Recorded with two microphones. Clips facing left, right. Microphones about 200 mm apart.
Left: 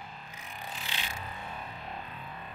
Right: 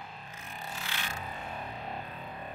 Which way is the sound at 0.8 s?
15° left (ahead or behind).